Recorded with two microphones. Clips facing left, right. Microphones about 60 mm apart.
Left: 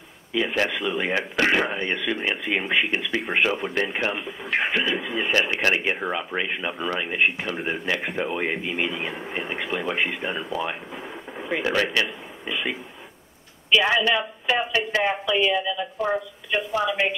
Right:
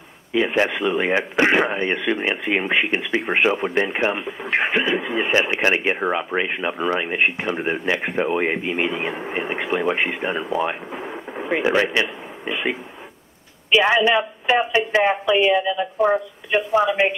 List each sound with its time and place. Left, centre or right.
0.3 s speech: right